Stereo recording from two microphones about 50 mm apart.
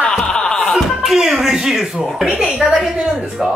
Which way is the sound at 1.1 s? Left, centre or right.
Centre.